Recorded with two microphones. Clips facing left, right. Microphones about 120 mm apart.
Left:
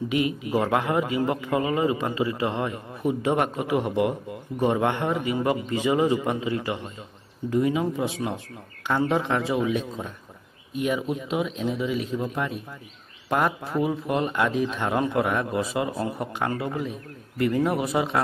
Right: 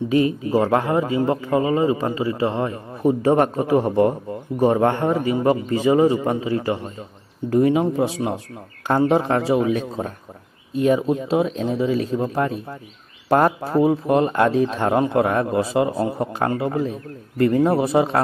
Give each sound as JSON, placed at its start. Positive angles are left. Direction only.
{"t": 0.1, "sound": "a man's voice", "side_deg": -35}